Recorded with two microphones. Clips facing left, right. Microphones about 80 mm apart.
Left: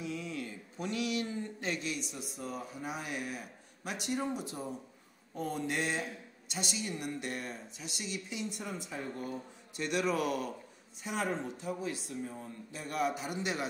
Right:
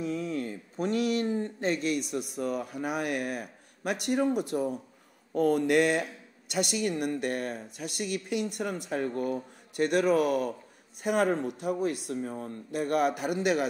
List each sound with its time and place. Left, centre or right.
0.0 s a woman's voice: right
11.0 s a woman's voice: right